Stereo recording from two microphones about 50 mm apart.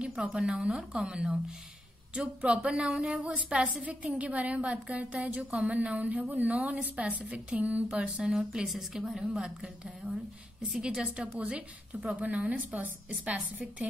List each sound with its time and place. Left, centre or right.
0.2 s a woman's voice: centre